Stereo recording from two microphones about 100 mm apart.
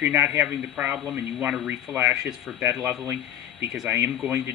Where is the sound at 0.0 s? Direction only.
15° right (ahead or behind).